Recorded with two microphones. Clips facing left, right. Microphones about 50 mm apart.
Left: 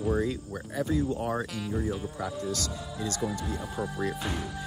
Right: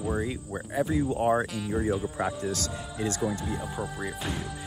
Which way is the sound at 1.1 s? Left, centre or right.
Right.